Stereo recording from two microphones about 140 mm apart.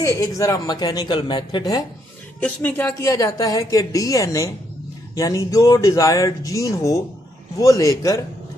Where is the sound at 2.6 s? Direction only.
15° left (ahead or behind).